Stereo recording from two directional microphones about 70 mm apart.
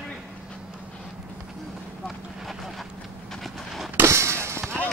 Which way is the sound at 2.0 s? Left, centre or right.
Centre.